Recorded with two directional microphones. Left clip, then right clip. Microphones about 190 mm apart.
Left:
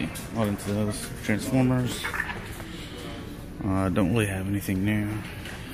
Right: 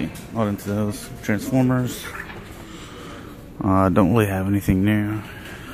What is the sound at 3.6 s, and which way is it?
Speech, 35° right (ahead or behind).